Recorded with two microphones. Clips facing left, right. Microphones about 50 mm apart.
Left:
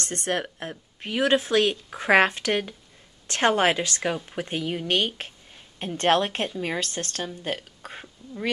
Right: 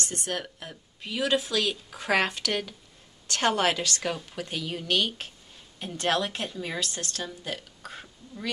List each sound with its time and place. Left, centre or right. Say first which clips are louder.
0.0 s a woman's voice: left 5 dB; left
8.2 s speech: left 5 dB; centre